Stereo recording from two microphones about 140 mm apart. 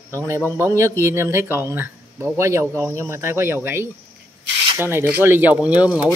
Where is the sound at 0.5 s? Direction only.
20° right (ahead or behind).